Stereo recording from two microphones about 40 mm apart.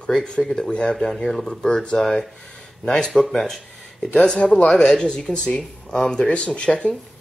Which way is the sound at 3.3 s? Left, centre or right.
Centre.